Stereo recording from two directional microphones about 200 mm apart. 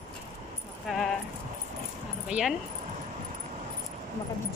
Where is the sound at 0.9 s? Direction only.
Centre (ahead or behind).